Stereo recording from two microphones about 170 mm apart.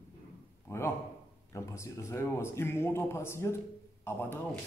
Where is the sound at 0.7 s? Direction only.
15° left (ahead or behind).